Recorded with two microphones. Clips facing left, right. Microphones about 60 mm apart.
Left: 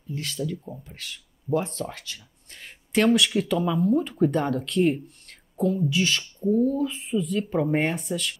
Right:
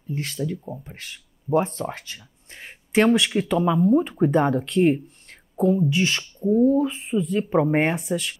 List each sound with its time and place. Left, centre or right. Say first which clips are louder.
0.1 s speech: right 2 dB; right